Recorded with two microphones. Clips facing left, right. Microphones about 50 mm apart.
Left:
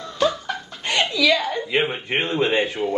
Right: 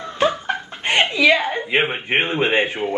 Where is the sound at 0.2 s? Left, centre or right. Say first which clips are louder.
Right 2 dB; right.